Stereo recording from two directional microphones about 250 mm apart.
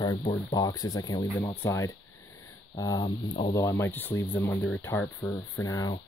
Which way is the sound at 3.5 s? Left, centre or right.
Centre.